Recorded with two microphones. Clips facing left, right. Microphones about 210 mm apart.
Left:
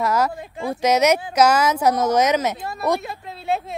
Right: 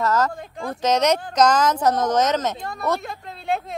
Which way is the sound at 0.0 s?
10° left (ahead or behind).